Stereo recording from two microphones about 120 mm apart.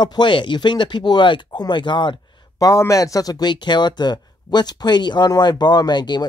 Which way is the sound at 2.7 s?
25° left (ahead or behind).